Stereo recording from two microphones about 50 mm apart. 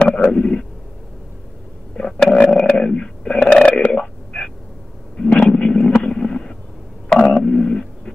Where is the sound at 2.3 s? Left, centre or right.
Left.